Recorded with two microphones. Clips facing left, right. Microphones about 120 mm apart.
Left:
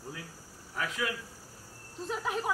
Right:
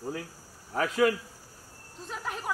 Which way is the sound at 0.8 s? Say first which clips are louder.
Right 10 dB; 45° right (ahead or behind).